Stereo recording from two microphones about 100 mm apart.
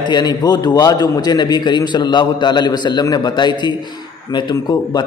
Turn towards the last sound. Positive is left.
turn(degrees=45)  # may be behind; listen again after turning